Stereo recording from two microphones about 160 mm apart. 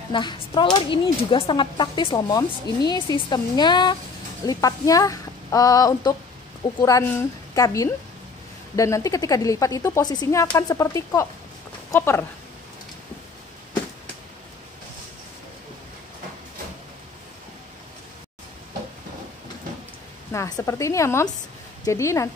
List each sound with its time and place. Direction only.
0.1 s speech: 30° left (ahead or behind)
20.3 s speech: 20° left (ahead or behind)